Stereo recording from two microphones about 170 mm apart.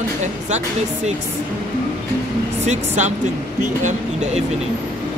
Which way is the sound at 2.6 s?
40° right (ahead or behind).